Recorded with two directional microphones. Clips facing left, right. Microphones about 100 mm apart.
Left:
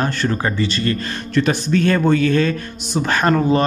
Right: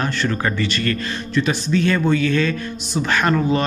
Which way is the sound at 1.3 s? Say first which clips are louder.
Left 2 dB; 50° left (ahead or behind).